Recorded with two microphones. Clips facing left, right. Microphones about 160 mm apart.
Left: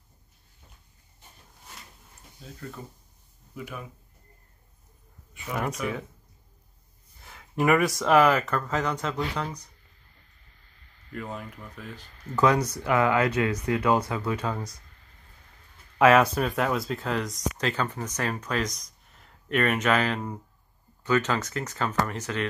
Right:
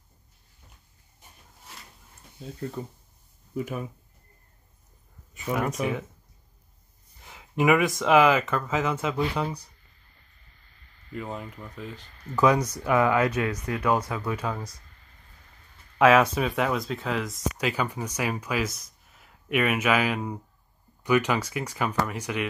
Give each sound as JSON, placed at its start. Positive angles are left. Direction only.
{"t": 2.6, "sound": "speech", "side_deg": -30}
{"t": 3.5, "sound": "speech", "side_deg": -45}
{"t": 5.6, "sound": "speech", "side_deg": 0}
{"t": 7.2, "sound": "speech", "side_deg": 0}
{"t": 11.1, "sound": "speech", "side_deg": -10}
{"t": 13.3, "sound": "speech", "side_deg": 20}
{"t": 14.3, "sound": "speech", "side_deg": -5}
{"t": 16.0, "sound": "speech", "side_deg": 0}